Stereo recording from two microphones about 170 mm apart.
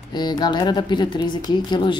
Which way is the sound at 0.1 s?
25° left (ahead or behind).